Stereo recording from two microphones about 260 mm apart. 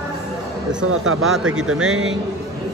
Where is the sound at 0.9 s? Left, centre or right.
Right.